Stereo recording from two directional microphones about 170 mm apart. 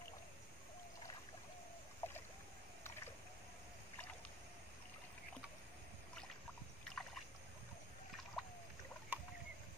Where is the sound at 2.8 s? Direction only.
15° left (ahead or behind).